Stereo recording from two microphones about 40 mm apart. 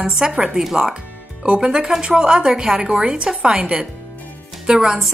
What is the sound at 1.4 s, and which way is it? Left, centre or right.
Speech, centre.